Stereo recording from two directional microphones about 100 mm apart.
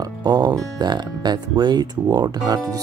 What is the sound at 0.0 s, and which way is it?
Speech, 45° right (ahead or behind).